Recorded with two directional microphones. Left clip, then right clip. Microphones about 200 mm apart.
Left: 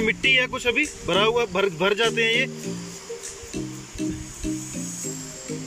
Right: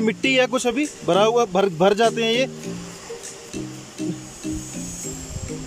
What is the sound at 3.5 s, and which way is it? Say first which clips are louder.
Music: even; centre (ahead or behind).